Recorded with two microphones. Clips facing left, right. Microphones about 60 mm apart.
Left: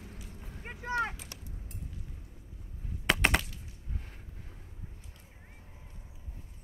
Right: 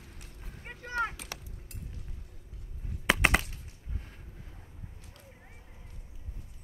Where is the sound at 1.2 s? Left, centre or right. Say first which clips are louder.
Right 4 dB; right.